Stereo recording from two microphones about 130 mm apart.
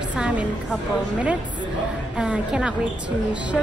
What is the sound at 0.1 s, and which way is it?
Speech, 10° right (ahead or behind).